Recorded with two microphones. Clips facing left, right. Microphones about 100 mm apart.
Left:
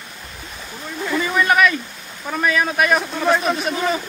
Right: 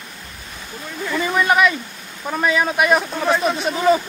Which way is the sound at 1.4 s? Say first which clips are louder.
Even; 20° right (ahead or behind).